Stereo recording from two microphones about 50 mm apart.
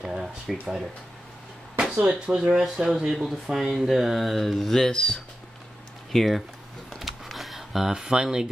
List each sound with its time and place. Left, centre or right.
0.0 s a sound: centre
1.8 s speech: centre
6.1 s speech: centre
7.0 s typing: centre